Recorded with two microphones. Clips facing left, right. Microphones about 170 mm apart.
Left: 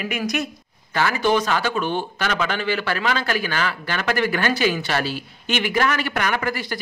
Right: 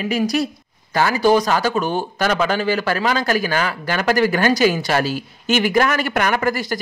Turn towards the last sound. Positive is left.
turn(degrees=-45)  # may be behind; listen again after turning